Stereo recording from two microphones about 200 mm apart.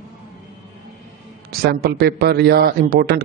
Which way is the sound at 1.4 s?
50° right (ahead or behind).